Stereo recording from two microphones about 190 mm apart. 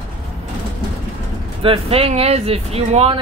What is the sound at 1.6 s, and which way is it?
Speech, 30° right (ahead or behind).